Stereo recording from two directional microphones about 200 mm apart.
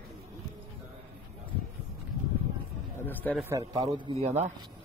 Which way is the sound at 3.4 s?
15° right (ahead or behind).